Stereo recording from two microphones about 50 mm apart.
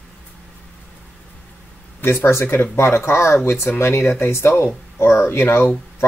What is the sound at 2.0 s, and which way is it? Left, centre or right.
Speech, left.